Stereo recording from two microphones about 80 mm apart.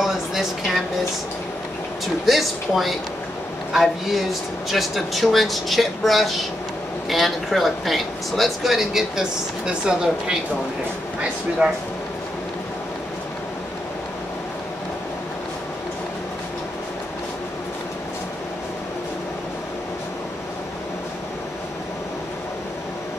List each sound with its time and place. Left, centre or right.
0.0 s a sound: centre
2.2 s speech: centre
11.6 s speech: centre